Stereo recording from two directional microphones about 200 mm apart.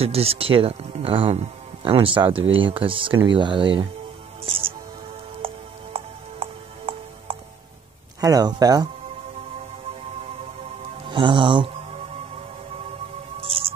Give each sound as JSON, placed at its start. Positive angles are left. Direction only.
{"t": 0.0, "sound": "speech", "side_deg": -30}
{"t": 4.5, "sound": "music", "side_deg": -30}
{"t": 8.2, "sound": "speech", "side_deg": -20}
{"t": 11.1, "sound": "music", "side_deg": -25}